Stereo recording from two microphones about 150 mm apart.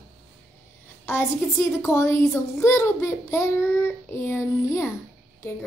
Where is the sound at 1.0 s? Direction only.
15° left (ahead or behind).